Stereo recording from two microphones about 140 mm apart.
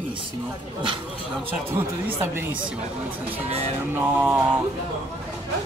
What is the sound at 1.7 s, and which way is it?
Speech, 15° right (ahead or behind).